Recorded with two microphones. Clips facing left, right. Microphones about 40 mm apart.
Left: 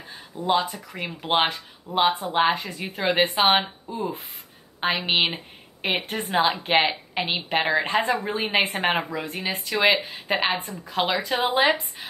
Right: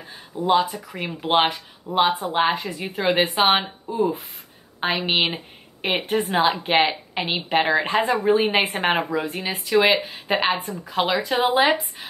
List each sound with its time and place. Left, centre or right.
0.4 s a woman's voice: centre